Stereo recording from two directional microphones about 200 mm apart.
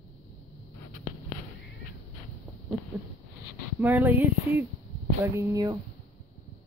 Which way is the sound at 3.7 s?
10° right (ahead or behind).